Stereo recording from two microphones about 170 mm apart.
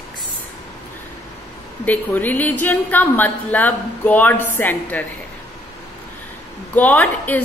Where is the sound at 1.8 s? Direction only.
10° left (ahead or behind).